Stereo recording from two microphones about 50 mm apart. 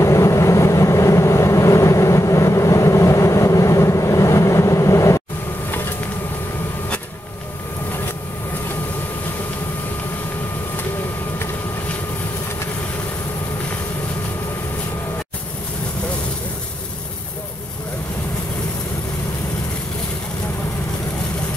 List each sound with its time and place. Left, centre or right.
0.0 s vehicle: left